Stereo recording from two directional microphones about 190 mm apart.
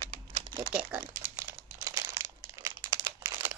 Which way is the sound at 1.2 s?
15° right (ahead or behind).